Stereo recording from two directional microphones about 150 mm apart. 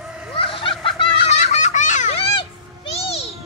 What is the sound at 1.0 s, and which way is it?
Children playing, 50° left (ahead or behind).